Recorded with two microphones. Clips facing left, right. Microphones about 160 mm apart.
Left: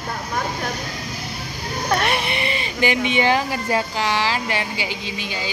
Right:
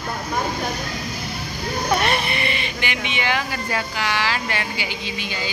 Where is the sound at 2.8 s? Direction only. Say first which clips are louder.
Left 10 dB; 35° left (ahead or behind).